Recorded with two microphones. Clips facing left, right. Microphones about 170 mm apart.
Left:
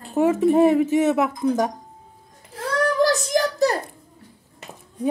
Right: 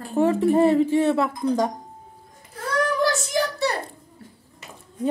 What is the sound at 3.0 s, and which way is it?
Child singing, 40° left (ahead or behind).